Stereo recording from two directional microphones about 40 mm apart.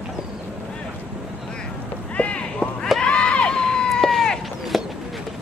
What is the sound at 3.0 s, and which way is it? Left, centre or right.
Crowd, left.